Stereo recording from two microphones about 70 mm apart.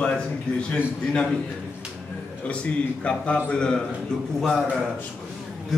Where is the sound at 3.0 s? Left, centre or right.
Centre.